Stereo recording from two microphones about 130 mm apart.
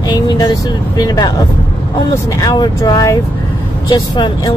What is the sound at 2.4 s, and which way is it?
Speech, 30° left (ahead or behind).